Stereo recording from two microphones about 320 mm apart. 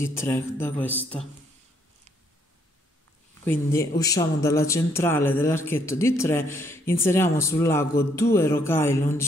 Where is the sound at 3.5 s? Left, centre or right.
Centre.